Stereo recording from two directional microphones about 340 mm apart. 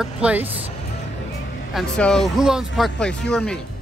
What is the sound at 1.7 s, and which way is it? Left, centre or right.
Speech, centre.